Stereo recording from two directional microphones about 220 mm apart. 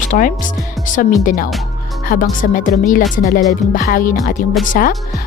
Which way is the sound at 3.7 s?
40° left (ahead or behind).